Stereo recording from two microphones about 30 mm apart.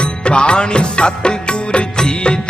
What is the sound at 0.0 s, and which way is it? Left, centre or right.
Music, left.